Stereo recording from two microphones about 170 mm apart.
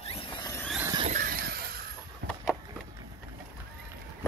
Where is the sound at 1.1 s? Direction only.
60° right (ahead or behind).